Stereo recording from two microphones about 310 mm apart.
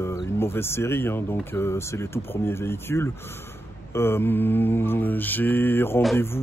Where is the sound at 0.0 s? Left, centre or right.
Centre.